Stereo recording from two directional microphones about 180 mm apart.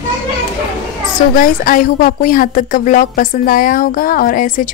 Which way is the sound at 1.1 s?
50° left (ahead or behind).